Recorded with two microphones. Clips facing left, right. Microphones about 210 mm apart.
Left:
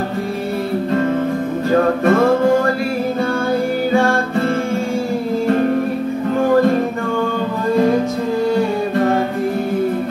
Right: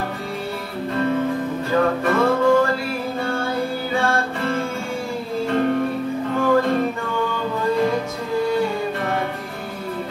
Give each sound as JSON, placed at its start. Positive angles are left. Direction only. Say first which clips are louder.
{"t": 2.0, "sound": "music", "louder": "left 5 dB", "side_deg": 50}
{"t": 3.9, "sound": "music", "louder": "left 6 dB", "side_deg": 45}